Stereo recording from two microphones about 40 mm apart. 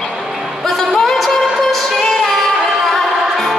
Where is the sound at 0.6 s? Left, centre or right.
Centre.